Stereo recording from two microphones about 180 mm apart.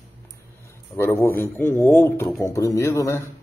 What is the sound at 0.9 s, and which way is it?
Speech, 15° left (ahead or behind).